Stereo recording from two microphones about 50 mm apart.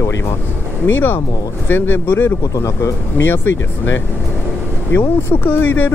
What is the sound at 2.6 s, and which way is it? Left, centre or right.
Speech, left.